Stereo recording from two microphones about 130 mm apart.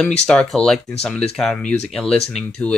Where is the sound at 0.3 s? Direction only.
5° left (ahead or behind).